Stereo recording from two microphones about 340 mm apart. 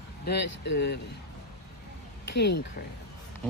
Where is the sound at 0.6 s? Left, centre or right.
Left.